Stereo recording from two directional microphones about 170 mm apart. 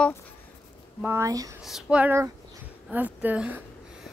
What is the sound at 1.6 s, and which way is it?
Speech, 5° right (ahead or behind).